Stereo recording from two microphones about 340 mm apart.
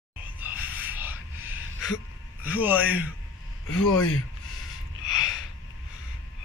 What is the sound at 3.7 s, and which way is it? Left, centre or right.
Speech, left.